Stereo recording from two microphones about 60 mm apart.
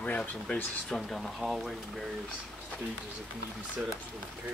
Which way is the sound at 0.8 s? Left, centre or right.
Centre.